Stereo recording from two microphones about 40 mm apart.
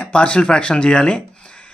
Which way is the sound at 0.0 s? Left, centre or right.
Left.